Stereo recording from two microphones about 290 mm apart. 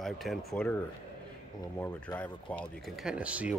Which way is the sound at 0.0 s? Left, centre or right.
Centre.